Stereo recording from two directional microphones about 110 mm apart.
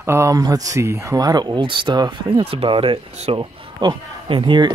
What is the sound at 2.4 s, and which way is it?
Speech, 60° right (ahead or behind).